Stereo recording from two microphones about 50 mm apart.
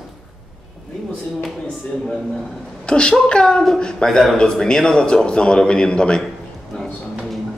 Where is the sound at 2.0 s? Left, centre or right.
Centre.